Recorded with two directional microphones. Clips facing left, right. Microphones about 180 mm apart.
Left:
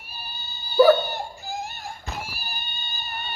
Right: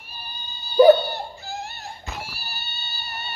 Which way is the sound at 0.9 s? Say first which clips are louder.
Right 1 dB; 10° left (ahead or behind).